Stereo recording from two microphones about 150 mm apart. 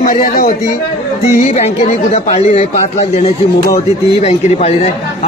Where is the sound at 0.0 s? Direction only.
60° left (ahead or behind).